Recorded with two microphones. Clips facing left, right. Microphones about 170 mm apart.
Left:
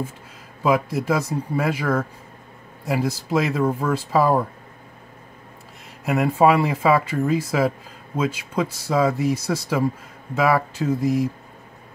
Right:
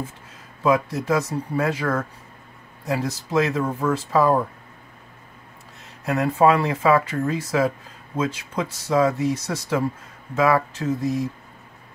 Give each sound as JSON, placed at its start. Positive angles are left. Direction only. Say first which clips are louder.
{"t": 0.7, "sound": "speech", "louder": "even", "side_deg": 10}
{"t": 6.0, "sound": "speech", "louder": "left 1 dB", "side_deg": 10}